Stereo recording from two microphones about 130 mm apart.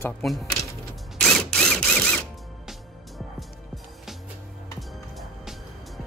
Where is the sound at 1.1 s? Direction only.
5° left (ahead or behind).